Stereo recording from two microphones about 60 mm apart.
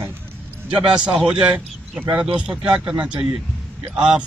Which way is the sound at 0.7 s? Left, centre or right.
Centre.